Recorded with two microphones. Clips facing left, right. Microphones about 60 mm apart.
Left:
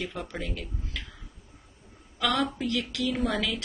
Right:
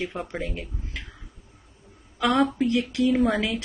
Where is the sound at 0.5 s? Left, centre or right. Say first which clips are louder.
Right 2 dB; right.